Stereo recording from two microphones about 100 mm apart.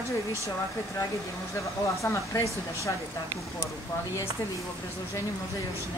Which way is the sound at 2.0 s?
30° left (ahead or behind).